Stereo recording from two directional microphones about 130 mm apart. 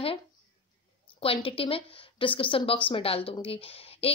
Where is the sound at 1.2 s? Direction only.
45° left (ahead or behind).